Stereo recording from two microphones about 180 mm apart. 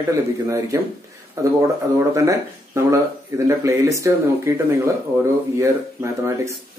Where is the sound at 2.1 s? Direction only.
15° right (ahead or behind).